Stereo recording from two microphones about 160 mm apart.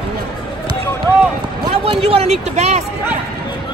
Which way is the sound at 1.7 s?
40° right (ahead or behind).